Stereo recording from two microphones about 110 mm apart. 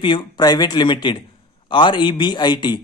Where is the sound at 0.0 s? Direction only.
45° left (ahead or behind).